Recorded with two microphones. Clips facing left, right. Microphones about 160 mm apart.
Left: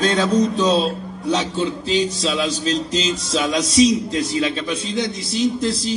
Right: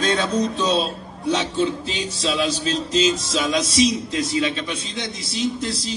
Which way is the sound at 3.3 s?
30° left (ahead or behind).